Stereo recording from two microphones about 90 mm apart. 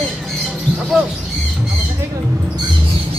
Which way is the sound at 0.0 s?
Centre (ahead or behind).